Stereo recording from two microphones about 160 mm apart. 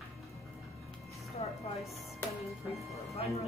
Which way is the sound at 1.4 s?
40° left (ahead or behind).